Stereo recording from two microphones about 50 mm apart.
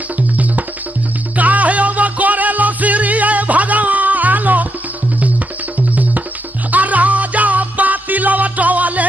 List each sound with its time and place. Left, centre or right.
1.3 s music: right
5.8 s music: right